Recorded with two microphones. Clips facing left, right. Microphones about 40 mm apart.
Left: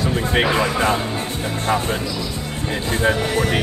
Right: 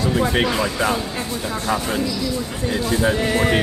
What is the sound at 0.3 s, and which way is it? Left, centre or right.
Speech, left.